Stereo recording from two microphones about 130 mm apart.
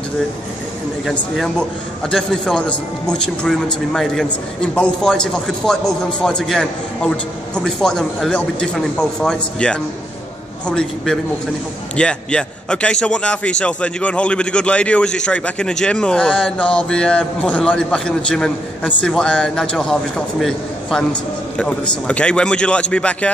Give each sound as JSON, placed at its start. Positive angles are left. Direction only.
{"t": 1.0, "sound": "a man's voice", "side_deg": 0}